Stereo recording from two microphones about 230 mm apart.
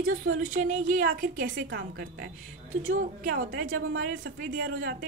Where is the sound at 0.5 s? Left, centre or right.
Right.